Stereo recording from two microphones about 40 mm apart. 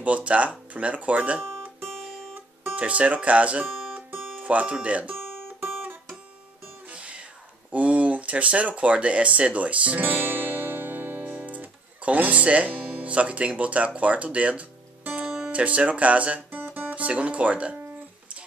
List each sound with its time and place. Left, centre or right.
0.0 s speech: right
2.7 s speech: right
5.6 s guitar: right
6.9 s music: right
7.7 s speech: right
9.9 s music: right
11.2 s guitar: right
15.4 s speech: right
16.9 s speech: right